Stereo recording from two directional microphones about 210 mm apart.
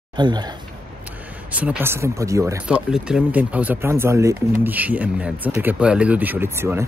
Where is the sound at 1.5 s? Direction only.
5° right (ahead or behind).